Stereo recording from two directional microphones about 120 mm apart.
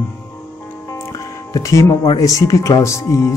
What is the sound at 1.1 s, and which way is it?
Music, 25° left (ahead or behind).